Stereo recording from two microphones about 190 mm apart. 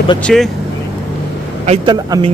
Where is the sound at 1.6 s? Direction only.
30° right (ahead or behind).